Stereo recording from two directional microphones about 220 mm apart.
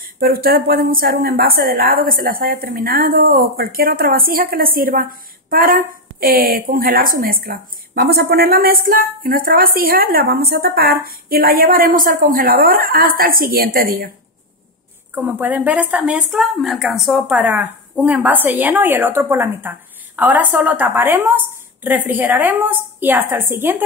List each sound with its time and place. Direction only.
0.0 s a woman's voice: 40° right (ahead or behind)
15.1 s a woman's voice: 10° right (ahead or behind)